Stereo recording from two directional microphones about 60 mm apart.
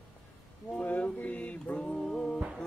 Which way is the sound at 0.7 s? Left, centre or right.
Left.